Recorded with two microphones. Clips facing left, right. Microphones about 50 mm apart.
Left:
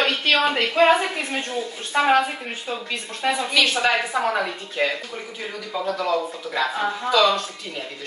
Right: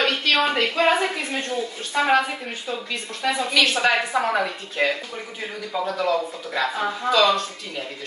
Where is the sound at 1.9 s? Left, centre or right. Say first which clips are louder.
Left 2 dB; centre.